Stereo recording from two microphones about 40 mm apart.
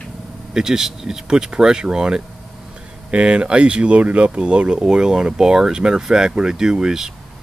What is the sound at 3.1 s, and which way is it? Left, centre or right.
Speech, right.